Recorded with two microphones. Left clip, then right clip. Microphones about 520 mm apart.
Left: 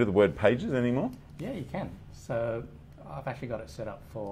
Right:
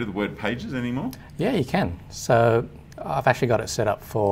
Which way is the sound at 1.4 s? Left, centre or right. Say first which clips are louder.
Right 14 dB; right.